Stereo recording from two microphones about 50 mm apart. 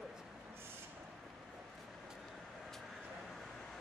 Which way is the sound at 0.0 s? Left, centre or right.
Centre.